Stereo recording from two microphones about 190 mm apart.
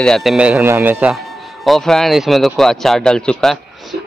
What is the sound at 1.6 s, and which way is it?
Speech, centre (ahead or behind).